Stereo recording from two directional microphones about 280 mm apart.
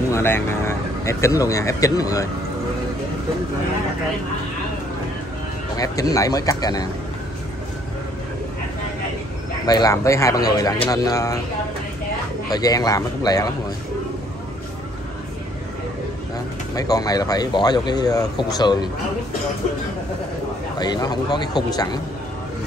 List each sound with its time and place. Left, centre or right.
0.1 s speech: centre
5.8 s speech: centre
9.7 s speech: centre
12.4 s speech: centre
16.7 s speech: centre
20.8 s speech: centre